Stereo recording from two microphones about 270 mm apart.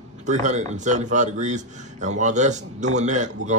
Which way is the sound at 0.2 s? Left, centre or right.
Right.